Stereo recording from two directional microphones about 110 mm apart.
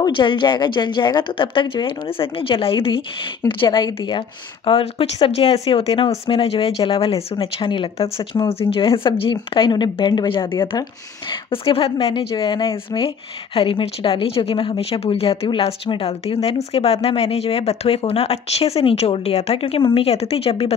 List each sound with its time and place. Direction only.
0.0 s a woman's voice: 45° left (ahead or behind)
4.6 s a woman's voice: 55° left (ahead or behind)